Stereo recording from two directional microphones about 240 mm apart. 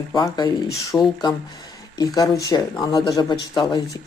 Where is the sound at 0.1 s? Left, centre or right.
Centre.